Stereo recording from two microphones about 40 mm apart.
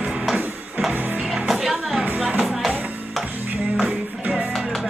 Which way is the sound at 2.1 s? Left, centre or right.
Right.